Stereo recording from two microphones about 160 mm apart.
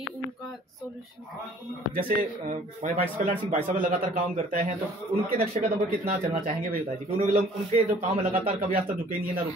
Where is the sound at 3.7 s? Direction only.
65° right (ahead or behind).